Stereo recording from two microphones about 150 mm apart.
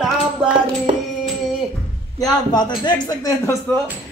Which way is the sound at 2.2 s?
25° left (ahead or behind).